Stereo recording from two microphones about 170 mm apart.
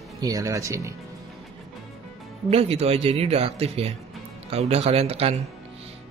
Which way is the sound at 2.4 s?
35° right (ahead or behind).